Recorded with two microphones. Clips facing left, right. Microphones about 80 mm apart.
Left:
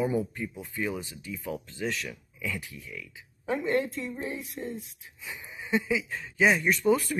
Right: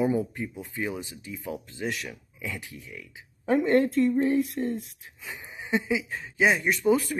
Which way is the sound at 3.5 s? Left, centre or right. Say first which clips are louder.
Right 7 dB; right.